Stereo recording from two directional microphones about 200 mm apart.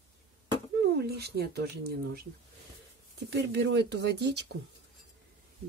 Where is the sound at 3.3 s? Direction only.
55° right (ahead or behind).